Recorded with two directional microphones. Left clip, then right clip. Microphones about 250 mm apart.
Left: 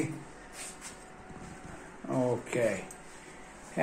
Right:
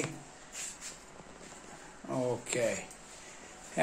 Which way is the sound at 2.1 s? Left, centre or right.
Centre.